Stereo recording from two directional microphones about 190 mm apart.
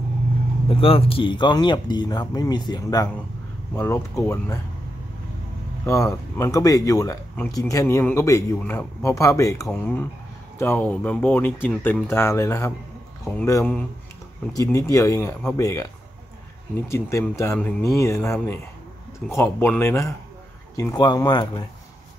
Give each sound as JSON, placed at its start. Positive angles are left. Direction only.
{"t": 0.7, "sound": "speech", "side_deg": 30}
{"t": 5.9, "sound": "speech", "side_deg": 15}